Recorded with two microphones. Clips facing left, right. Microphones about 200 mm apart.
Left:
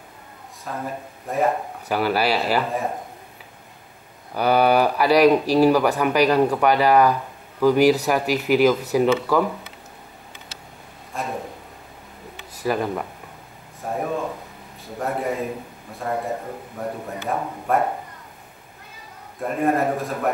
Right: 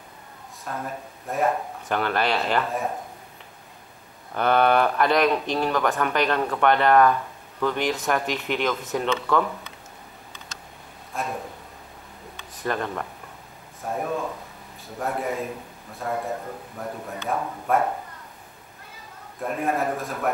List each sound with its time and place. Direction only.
0.7 s speech: centre (ahead or behind)
4.3 s speech: 5° left (ahead or behind)
11.1 s a man's voice: centre (ahead or behind)
12.6 s speech: 5° left (ahead or behind)
19.4 s speech: centre (ahead or behind)